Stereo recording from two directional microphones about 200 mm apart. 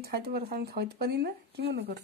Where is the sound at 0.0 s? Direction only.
50° right (ahead or behind).